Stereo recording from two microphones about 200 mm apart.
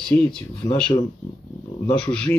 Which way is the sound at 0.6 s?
5° left (ahead or behind).